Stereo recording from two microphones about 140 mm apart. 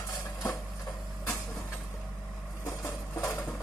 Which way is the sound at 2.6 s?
20° left (ahead or behind).